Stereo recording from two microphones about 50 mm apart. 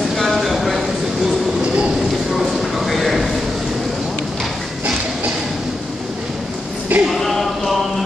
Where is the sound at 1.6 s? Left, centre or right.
Centre.